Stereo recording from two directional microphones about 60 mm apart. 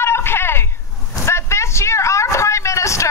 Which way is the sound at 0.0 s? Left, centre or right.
Left.